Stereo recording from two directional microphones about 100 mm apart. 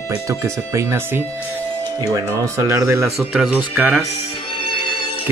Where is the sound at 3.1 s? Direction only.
Centre (ahead or behind).